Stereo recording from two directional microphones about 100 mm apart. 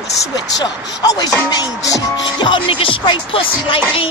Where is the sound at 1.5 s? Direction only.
35° left (ahead or behind).